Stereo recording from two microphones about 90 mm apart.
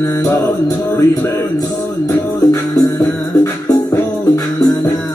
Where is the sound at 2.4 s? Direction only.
45° left (ahead or behind).